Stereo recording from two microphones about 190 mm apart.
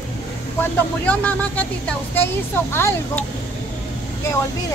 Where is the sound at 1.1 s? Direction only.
10° left (ahead or behind).